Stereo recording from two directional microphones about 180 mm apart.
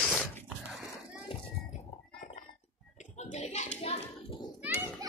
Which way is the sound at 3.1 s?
40° left (ahead or behind).